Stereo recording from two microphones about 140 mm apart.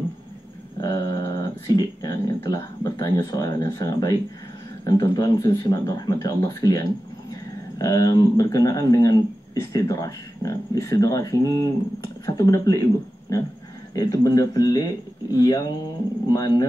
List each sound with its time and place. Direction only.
0.7 s speech: 25° left (ahead or behind)